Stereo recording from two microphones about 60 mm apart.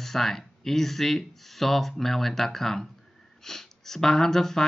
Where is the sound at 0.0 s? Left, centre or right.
Centre.